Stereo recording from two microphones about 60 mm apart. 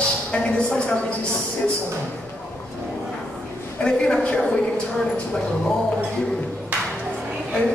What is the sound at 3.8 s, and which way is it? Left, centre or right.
A woman's voice, centre.